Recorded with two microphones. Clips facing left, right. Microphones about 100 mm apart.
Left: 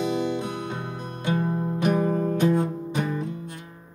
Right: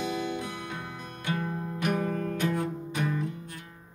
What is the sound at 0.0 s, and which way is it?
Music, 25° left (ahead or behind).